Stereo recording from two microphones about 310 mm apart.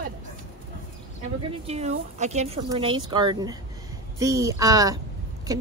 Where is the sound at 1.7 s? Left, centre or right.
Right.